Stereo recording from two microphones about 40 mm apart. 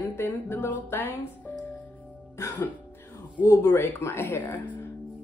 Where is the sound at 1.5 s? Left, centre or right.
Left.